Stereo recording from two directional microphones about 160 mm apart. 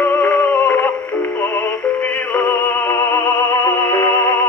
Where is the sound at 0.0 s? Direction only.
10° left (ahead or behind).